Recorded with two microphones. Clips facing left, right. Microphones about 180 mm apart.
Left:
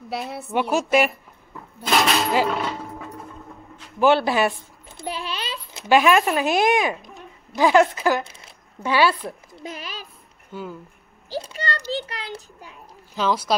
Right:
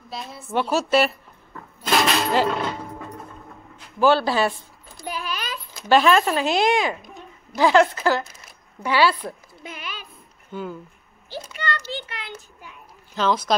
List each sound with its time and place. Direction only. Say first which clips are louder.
0.1 s a woman's voice: left 6 dB; 65° left (ahead or behind)
0.5 s speech: even; 15° left (ahead or behind)
4.0 s a sound: left 1 dB; 20° left (ahead or behind)
5.9 s speech: even; 15° left (ahead or behind)
8.2 s zipper: left 1 dB; 30° left (ahead or behind)
9.6 s a child's voice: left 2 dB; 35° left (ahead or behind)
10.5 s speech: right 2 dB; 5° left (ahead or behind)
11.2 s a child's voice: left 2 dB; 35° left (ahead or behind)
11.9 s a sound: left 4 dB; 35° left (ahead or behind)
13.1 s speech: right 1 dB; 10° left (ahead or behind)